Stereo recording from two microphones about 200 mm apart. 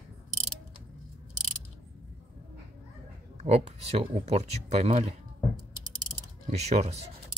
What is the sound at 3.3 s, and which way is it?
Speech, 30° right (ahead or behind).